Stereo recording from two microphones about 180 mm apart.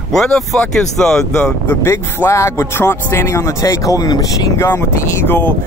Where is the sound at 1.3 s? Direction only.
15° left (ahead or behind).